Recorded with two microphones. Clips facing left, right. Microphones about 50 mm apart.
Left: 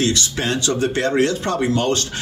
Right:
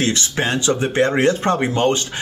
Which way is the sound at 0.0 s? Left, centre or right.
Right.